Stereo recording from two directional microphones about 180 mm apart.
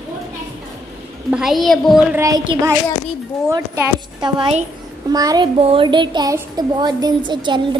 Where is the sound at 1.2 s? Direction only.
5° right (ahead or behind).